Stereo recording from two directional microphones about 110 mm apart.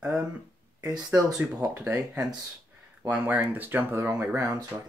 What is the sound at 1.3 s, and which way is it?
Speech, 10° right (ahead or behind).